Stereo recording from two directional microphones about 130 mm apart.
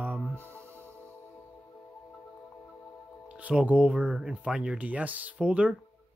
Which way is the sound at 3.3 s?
10° right (ahead or behind).